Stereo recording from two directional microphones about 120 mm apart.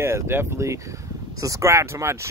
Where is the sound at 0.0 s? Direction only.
20° right (ahead or behind).